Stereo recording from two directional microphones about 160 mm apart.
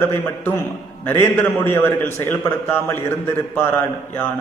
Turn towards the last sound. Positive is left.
turn(degrees=15)  # may be behind; listen again after turning